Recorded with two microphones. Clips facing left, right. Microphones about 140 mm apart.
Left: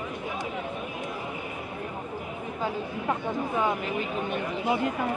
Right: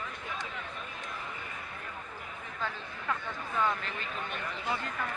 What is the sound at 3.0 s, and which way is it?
Speech, 20° left (ahead or behind).